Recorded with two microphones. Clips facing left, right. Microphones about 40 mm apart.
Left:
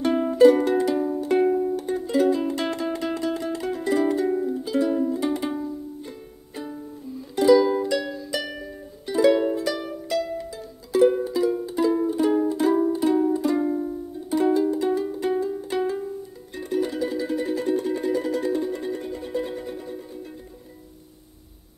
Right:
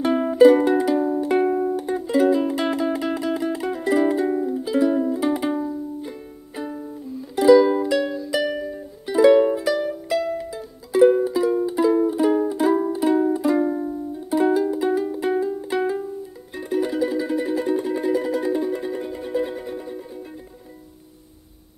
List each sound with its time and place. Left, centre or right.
0.0 s music: centre
13.7 s music: centre
14.3 s music: centre